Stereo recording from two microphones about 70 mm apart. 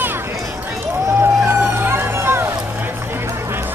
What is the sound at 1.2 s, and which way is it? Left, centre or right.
Music, right.